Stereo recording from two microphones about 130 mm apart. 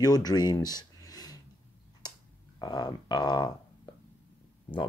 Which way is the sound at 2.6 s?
30° left (ahead or behind).